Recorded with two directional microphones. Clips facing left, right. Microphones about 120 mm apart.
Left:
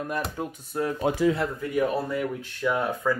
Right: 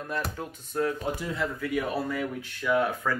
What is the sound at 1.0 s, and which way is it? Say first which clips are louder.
Speech: left 7 dB; 90° left.